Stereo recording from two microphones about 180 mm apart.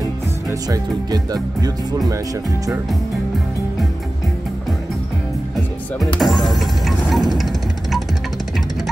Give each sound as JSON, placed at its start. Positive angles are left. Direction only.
{"t": 0.0, "sound": "music", "side_deg": -20}
{"t": 6.1, "sound": "music", "side_deg": 0}